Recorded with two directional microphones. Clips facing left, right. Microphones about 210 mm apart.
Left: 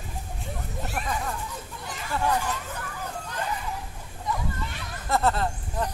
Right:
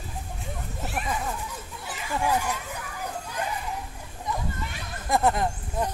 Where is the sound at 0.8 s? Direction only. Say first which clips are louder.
Right 1 dB; 5° right (ahead or behind).